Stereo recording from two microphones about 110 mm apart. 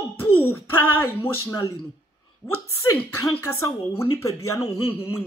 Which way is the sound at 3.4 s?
25° left (ahead or behind).